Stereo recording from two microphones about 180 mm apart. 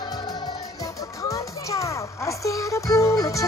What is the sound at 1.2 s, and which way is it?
A child's voice, 15° left (ahead or behind).